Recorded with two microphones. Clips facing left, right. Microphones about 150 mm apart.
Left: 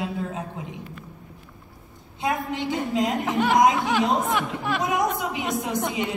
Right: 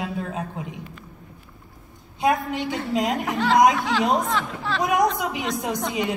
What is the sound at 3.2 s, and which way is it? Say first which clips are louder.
Speech: right 2 dB; 15° left (ahead or behind).